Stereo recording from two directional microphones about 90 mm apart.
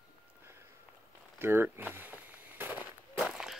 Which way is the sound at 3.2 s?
5° right (ahead or behind).